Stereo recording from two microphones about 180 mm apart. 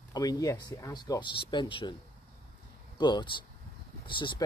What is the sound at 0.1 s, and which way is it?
Speech, 20° left (ahead or behind).